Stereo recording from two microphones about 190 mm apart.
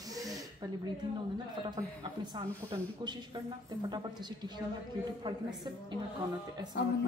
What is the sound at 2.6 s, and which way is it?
A woman's voice, 20° right (ahead or behind).